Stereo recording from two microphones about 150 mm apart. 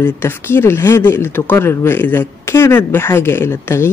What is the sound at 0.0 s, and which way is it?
A woman's voice, 15° left (ahead or behind).